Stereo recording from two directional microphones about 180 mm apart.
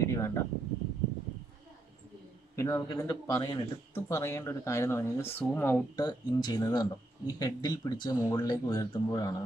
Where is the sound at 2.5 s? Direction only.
20° left (ahead or behind).